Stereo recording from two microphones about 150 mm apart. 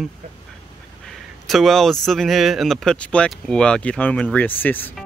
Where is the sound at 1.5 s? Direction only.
Centre (ahead or behind).